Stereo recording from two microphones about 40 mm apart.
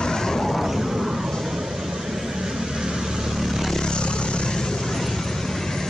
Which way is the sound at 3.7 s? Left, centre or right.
Centre.